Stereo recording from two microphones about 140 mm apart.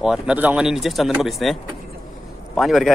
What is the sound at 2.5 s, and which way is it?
Speech, centre (ahead or behind).